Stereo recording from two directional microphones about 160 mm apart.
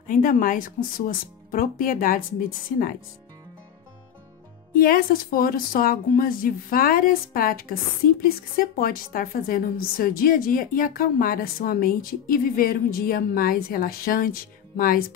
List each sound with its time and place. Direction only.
0.1 s a woman's voice: 55° left (ahead or behind)
4.7 s a woman's voice: 65° left (ahead or behind)